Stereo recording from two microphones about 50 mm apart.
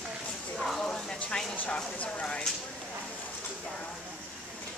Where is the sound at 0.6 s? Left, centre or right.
Centre.